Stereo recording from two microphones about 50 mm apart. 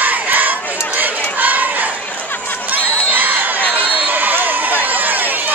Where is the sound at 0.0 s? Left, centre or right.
Right.